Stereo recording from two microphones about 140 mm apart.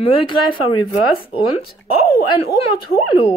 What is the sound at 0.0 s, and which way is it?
Speech, 40° left (ahead or behind).